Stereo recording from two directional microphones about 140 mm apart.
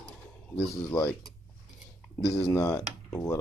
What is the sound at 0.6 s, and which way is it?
Speech, 20° left (ahead or behind).